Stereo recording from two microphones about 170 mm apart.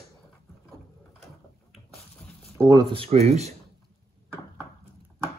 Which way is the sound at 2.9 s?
35° right (ahead or behind).